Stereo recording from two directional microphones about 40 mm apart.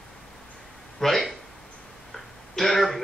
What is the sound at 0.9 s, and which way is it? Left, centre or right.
Speech, centre.